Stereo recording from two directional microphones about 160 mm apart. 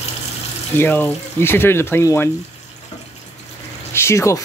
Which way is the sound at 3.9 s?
15° left (ahead or behind).